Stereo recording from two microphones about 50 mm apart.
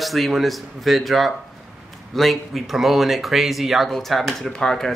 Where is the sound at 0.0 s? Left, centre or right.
Centre.